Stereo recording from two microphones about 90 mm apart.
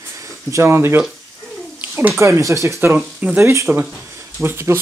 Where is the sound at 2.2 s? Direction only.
35° right (ahead or behind).